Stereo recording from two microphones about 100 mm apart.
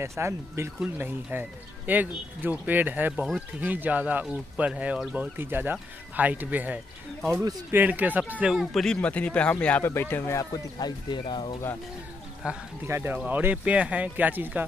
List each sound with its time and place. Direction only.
0.0 s speech: 25° right (ahead or behind)
8.5 s speech: 5° left (ahead or behind); by 11.5 s 50° left (ahead or behind)
12.4 s speech: 10° right (ahead or behind)
12.8 s speech: 20° right (ahead or behind)